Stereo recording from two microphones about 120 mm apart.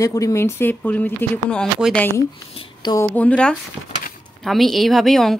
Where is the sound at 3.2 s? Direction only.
10° left (ahead or behind).